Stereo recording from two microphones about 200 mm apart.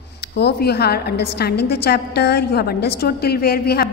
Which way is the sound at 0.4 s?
55° left (ahead or behind).